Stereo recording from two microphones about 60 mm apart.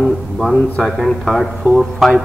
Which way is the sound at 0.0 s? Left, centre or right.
Centre.